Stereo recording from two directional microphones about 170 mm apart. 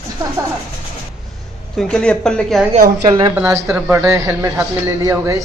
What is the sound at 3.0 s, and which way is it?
Speech, 30° right (ahead or behind).